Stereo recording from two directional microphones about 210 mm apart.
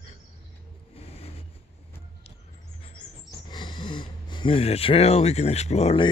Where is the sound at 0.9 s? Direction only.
30° left (ahead or behind).